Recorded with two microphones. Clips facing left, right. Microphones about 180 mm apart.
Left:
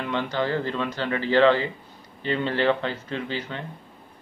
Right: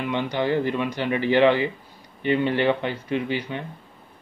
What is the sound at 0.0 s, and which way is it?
Speech, 15° right (ahead or behind).